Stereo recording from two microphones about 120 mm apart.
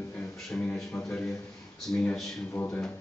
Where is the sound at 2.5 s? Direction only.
15° left (ahead or behind).